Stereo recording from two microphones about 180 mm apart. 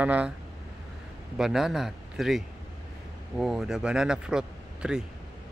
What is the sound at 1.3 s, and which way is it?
Speech, centre (ahead or behind).